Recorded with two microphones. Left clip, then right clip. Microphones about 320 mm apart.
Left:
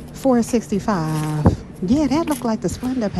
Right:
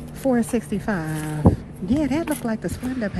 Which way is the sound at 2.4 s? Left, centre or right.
Right.